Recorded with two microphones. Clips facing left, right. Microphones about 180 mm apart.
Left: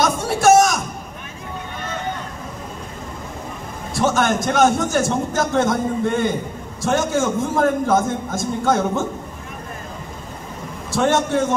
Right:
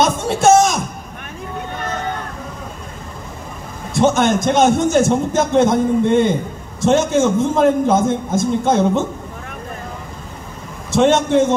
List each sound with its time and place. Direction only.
0.0 s a sound: 25° right (ahead or behind)
3.9 s a man's voice: 20° right (ahead or behind)
10.9 s a man's voice: 20° right (ahead or behind)